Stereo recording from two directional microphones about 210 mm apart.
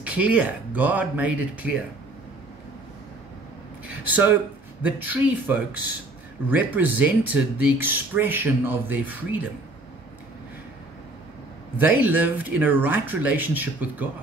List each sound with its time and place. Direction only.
0.0 s speech: 5° right (ahead or behind)
3.8 s a sound: 5° right (ahead or behind)
4.8 s speech: 10° right (ahead or behind)
11.7 s speech: 10° right (ahead or behind)